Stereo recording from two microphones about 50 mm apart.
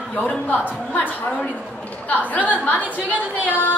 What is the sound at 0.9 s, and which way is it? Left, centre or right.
A woman's voice, left.